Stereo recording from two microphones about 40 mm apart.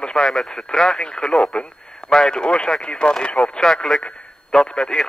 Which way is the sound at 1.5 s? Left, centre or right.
Left.